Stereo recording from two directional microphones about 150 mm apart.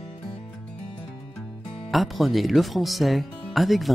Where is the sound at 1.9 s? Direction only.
Centre (ahead or behind).